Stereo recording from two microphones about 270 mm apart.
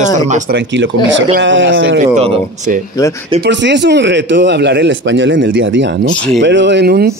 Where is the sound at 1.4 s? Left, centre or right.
Right.